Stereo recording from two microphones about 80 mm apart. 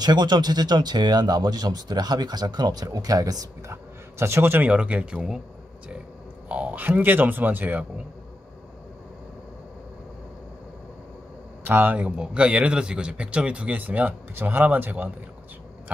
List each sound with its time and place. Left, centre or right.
0.0 s speech: right
4.2 s a man's voice: right
4.6 s speech: centre
6.5 s speech: centre
11.6 s speech: right